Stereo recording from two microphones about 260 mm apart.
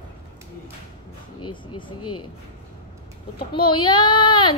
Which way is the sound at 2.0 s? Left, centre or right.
Left.